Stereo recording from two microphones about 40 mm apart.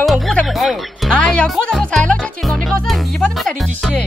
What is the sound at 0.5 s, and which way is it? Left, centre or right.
Music, centre.